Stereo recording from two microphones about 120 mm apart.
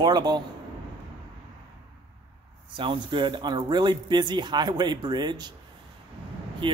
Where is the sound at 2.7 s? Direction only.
45° right (ahead or behind).